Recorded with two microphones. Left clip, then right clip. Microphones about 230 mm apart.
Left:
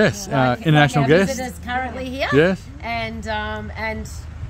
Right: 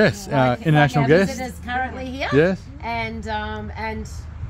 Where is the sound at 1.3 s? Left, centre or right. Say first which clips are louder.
Left 1 dB; centre.